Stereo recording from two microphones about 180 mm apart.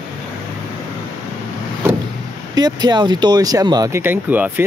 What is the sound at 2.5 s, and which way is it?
Speech, 20° right (ahead or behind).